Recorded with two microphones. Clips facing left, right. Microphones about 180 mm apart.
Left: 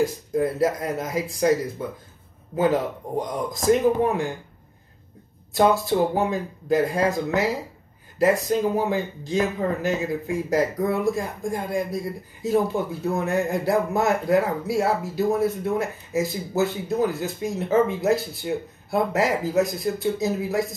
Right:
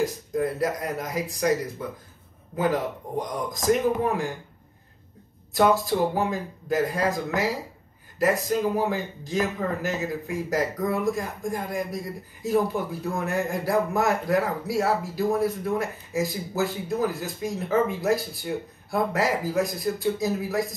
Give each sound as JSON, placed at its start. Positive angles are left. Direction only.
{"t": 0.0, "sound": "speech", "side_deg": 25}
{"t": 5.5, "sound": "speech", "side_deg": 25}